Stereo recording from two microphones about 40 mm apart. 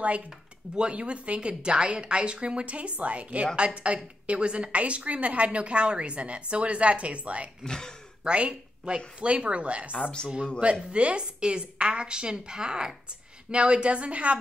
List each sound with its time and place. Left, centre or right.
0.7 s a woman's voice: right
7.6 s speech: centre
8.2 s a woman's voice: right